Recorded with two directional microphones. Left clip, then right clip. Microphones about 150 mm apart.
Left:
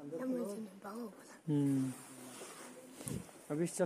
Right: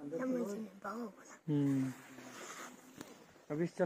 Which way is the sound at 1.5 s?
20° left (ahead or behind).